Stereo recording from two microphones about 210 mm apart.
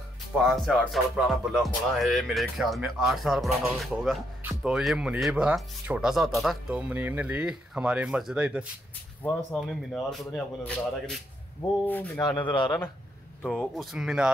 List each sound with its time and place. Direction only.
0.4 s speech: centre (ahead or behind)
12.4 s a man's voice: 20° left (ahead or behind)
13.4 s speech: centre (ahead or behind)